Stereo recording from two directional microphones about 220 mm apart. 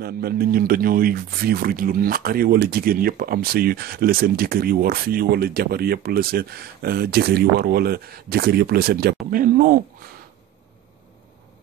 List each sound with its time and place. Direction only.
0.0 s speech: 45° right (ahead or behind)